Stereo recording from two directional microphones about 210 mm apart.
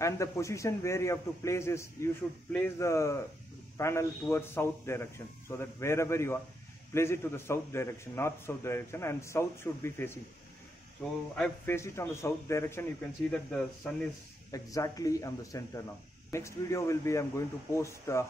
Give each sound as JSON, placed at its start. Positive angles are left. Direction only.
{"t": 0.0, "sound": "a man's voice", "side_deg": 15}
{"t": 11.3, "sound": "a man's voice", "side_deg": 5}
{"t": 14.5, "sound": "a man's voice", "side_deg": 15}